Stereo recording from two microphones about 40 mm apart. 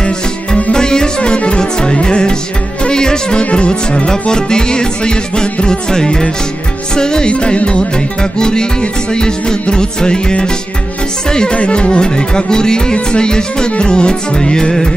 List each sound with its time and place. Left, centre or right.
0.7 s music: centre